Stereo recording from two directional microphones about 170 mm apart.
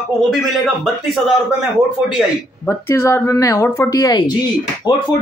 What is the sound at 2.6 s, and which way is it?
Speech, 15° left (ahead or behind).